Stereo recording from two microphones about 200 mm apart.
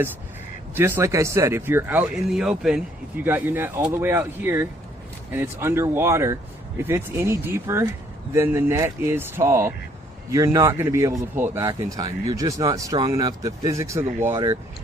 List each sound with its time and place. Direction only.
0.7 s a man's voice: 10° right (ahead or behind)